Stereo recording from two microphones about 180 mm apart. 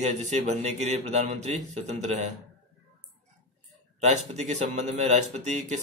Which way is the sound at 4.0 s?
40° right (ahead or behind).